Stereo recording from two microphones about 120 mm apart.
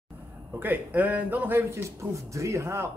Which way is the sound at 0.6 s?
15° right (ahead or behind).